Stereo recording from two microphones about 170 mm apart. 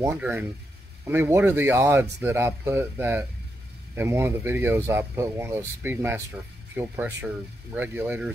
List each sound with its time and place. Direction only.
0.0 s speech: 15° right (ahead or behind)